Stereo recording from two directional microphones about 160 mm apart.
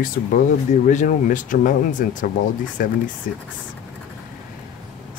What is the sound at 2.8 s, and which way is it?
Speech, 65° left (ahead or behind).